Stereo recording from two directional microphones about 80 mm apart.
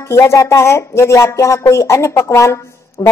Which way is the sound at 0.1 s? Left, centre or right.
Left.